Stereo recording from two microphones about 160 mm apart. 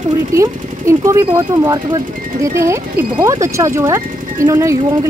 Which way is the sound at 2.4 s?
20° right (ahead or behind).